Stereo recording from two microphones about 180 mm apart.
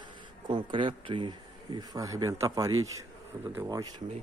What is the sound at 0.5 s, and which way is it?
A man's voice, 25° right (ahead or behind).